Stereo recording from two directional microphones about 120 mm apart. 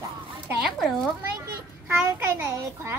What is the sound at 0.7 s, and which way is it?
Speech, 5° left (ahead or behind).